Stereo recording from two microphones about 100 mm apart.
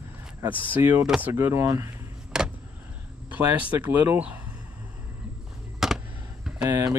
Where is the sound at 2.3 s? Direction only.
5° right (ahead or behind).